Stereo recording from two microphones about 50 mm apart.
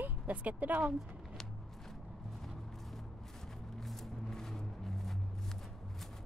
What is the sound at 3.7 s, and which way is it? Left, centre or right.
Music, centre.